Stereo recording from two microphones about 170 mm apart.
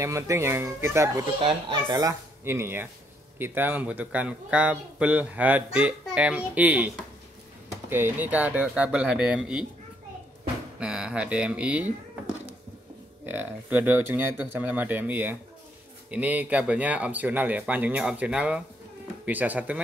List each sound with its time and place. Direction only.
0.0 s speech: 15° right (ahead or behind)
1.4 s speech: 25° right (ahead or behind); by 6.9 s 10° right (ahead or behind)
7.9 s speech: 10° right (ahead or behind)
10.8 s speech: 5° right (ahead or behind)
13.2 s speech: 10° right (ahead or behind)